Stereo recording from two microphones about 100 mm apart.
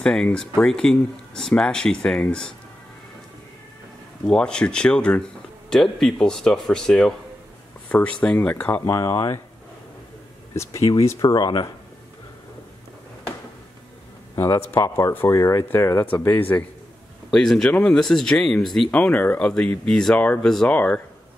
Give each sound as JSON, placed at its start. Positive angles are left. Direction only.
{"t": 0.0, "sound": "speech", "side_deg": 5}
{"t": 4.3, "sound": "speech", "side_deg": 10}
{"t": 8.8, "sound": "speech", "side_deg": 30}
{"t": 10.5, "sound": "speech", "side_deg": 30}
{"t": 11.1, "sound": "speech", "side_deg": 45}
{"t": 14.3, "sound": "a sound", "side_deg": 30}
{"t": 14.7, "sound": "speech", "side_deg": 30}
{"t": 16.1, "sound": "speech", "side_deg": 20}
{"t": 17.3, "sound": "speech", "side_deg": 5}